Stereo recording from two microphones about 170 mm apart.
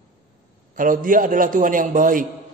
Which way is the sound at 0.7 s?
50° right (ahead or behind).